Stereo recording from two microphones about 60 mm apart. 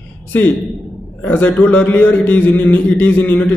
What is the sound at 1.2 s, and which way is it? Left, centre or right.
Speech, left.